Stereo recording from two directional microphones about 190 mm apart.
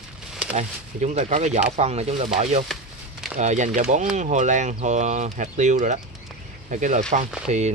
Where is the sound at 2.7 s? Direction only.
Centre (ahead or behind).